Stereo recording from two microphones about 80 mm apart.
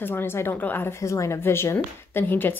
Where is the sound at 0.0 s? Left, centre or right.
Left.